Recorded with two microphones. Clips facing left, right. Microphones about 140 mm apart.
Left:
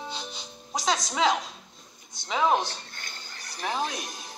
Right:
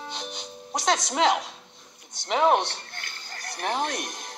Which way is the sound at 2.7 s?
60° right (ahead or behind).